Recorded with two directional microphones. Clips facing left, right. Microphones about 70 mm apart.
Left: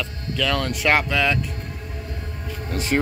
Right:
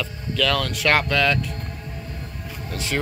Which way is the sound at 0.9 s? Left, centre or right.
Centre.